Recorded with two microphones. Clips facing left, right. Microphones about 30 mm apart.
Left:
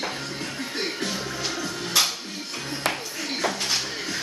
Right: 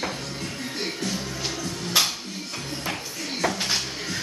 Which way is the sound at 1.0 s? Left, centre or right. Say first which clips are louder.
Left 1 dB; left.